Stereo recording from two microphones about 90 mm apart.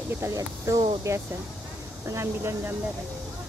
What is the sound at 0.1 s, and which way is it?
Speech, 30° right (ahead or behind).